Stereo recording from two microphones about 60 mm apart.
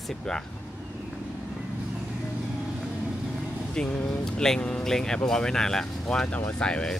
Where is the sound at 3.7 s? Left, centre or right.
Left.